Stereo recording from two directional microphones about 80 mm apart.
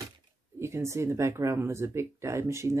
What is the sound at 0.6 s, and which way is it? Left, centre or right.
Speech, right.